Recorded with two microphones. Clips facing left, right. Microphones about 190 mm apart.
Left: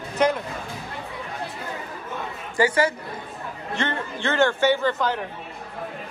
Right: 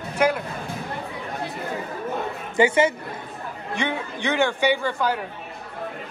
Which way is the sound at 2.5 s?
25° right (ahead or behind).